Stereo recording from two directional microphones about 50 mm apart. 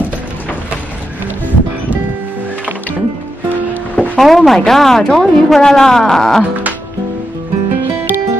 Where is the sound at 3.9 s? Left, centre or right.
Left.